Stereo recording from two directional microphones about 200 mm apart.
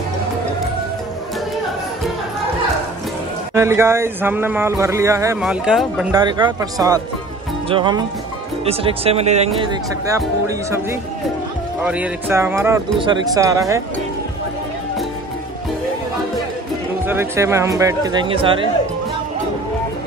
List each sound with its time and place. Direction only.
3.5 s speech: 15° right (ahead or behind)
5.4 s speech: centre (ahead or behind)
6.1 s speech: 20° right (ahead or behind)
9.6 s speech: 20° right (ahead or behind)
17.0 s speech: 10° right (ahead or behind)